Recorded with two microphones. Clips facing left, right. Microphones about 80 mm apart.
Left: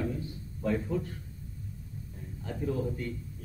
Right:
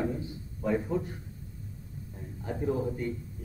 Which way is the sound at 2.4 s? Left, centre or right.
Right.